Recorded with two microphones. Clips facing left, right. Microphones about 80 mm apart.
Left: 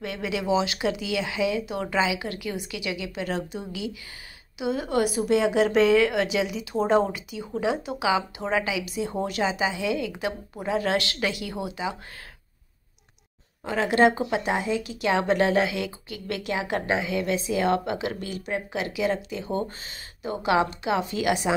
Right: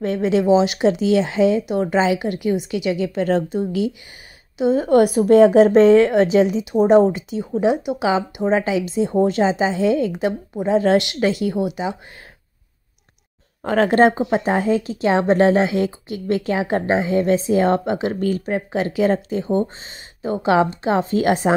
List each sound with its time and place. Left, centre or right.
0.0 s a woman's voice: right
6.6 s a woman's voice: centre; by 10.1 s right
10.1 s a woman's voice: right
13.7 s a woman's voice: right